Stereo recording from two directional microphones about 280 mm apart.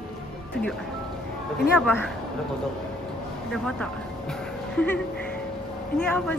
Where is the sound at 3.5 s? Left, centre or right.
Centre.